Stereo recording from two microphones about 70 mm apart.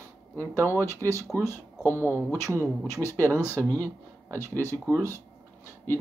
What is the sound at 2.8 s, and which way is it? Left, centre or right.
Speech, left.